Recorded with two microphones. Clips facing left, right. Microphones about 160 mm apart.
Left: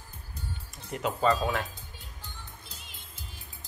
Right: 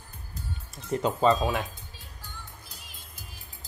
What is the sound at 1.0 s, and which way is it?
Speech, 25° right (ahead or behind).